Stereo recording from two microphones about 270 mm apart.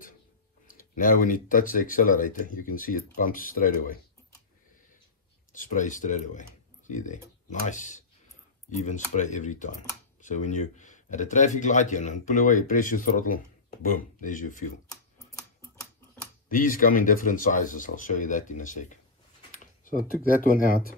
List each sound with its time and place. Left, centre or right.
0.7 s speech: left
5.5 s speech: left
16.4 s speech: left